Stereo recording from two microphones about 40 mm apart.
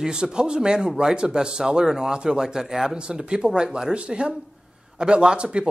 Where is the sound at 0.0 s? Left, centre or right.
Centre.